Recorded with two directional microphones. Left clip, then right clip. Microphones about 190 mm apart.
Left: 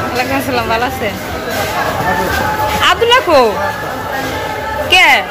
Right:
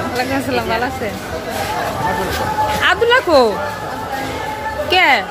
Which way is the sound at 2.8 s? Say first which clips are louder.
Left 4 dB; 25° right (ahead or behind).